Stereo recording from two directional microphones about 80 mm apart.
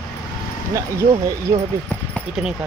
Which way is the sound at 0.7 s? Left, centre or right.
Right.